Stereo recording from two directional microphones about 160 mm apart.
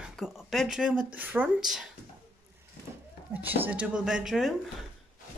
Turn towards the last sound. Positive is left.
turn(degrees=0)  # may be behind; listen again after turning